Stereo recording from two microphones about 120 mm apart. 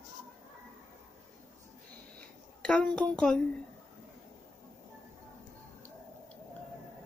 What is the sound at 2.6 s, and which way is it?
Speech, 5° left (ahead or behind).